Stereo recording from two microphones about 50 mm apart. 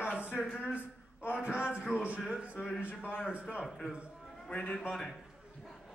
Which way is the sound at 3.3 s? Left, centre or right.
Right.